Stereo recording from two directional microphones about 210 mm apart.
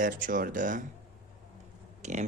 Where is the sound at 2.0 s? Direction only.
35° right (ahead or behind).